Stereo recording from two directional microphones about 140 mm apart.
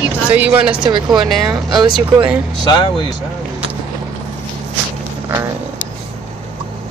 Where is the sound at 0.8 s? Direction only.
35° right (ahead or behind).